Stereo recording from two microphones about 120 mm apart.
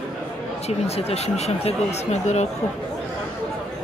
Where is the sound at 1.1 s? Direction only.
60° left (ahead or behind).